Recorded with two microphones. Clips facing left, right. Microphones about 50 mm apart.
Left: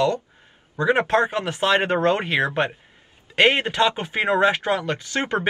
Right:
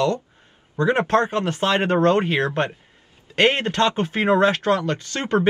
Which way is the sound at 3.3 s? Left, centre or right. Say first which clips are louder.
Left 1 dB; centre.